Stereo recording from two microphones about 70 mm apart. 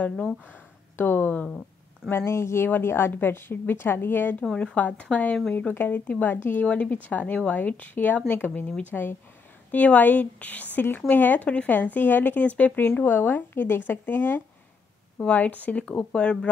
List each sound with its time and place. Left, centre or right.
0.5 s speech: left
2.0 s a woman's voice: left
4.4 s speech: centre
6.6 s speech: centre
15.1 s speech: centre